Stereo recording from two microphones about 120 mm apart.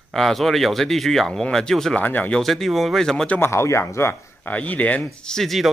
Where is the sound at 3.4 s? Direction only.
25° left (ahead or behind).